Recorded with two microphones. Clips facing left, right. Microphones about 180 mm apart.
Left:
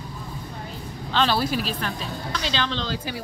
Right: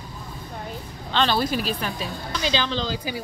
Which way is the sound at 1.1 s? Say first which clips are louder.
Even; 5° left (ahead or behind).